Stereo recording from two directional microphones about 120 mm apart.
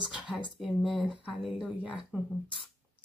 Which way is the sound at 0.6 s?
Centre (ahead or behind).